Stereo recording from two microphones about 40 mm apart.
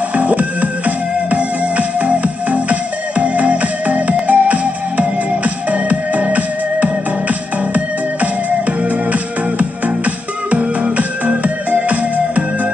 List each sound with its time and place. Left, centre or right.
0.1 s music: right